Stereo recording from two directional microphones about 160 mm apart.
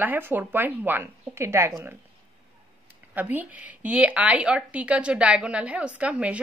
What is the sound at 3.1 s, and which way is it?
A woman's voice, 10° right (ahead or behind).